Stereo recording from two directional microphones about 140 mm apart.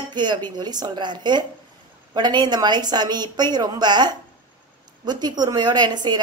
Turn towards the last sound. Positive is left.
turn(degrees=-30)  # may be behind; listen again after turning